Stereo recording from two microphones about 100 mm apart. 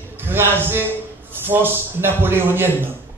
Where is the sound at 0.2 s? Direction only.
20° right (ahead or behind).